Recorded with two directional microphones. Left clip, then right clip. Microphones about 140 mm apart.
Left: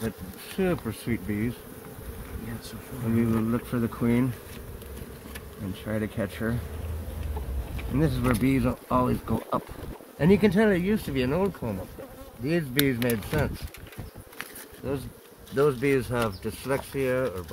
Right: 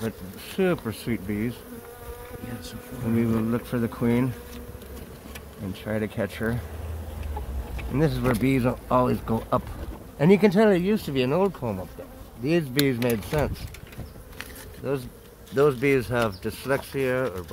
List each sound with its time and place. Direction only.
0.6 s speech: 15° right (ahead or behind)
3.2 s speech: 15° right (ahead or behind)
5.9 s speech: 20° right (ahead or behind)
7.9 s speech: 15° right (ahead or behind)
14.8 s speech: 20° right (ahead or behind)